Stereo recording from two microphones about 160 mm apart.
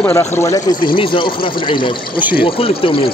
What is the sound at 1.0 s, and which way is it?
A man's voice, 30° left (ahead or behind).